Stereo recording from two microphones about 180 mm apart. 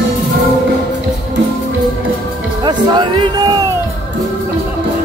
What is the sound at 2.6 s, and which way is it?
Music, 25° right (ahead or behind).